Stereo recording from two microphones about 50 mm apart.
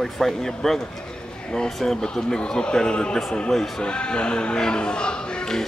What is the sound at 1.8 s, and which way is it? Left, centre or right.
Speech, centre.